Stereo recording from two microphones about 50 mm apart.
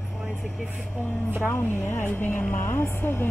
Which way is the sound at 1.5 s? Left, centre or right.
Left.